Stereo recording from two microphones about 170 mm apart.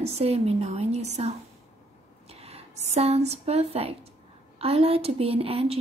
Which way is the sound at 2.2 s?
35° right (ahead or behind).